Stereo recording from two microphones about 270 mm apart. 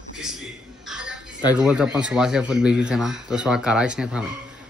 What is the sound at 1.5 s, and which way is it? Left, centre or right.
Speech, centre.